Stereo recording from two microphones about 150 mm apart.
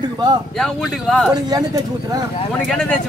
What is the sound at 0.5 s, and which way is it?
Speech, 5° left (ahead or behind).